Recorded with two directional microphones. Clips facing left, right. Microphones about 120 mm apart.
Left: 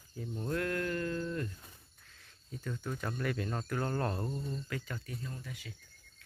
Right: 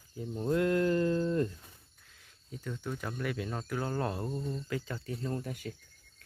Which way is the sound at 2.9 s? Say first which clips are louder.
Even; 5° right (ahead or behind).